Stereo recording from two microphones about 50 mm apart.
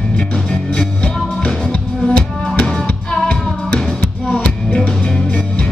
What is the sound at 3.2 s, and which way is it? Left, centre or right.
Music, centre.